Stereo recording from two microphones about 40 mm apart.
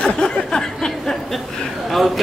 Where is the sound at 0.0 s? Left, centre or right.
Centre.